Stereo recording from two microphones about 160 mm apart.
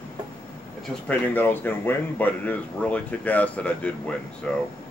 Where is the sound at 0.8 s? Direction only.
10° left (ahead or behind).